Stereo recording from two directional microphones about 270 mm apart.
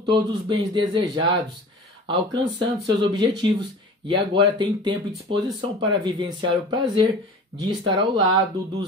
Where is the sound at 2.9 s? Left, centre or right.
Centre.